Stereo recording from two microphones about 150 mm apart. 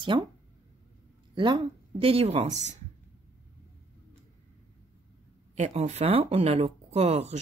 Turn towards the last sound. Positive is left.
turn(degrees=-45)  # may be behind; listen again after turning